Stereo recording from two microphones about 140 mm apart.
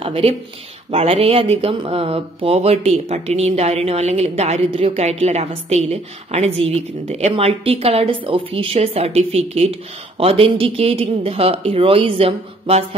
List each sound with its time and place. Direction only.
0.0 s speech: 40° right (ahead or behind)